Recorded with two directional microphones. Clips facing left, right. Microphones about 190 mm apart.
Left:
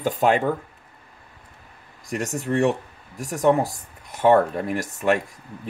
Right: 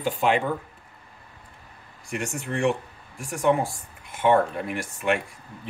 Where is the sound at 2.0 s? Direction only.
40° left (ahead or behind).